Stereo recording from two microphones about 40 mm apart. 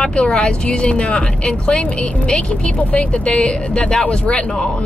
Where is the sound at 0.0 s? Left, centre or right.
Left.